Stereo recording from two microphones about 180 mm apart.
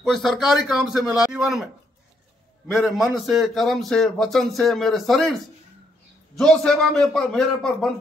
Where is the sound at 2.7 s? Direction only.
Centre (ahead or behind).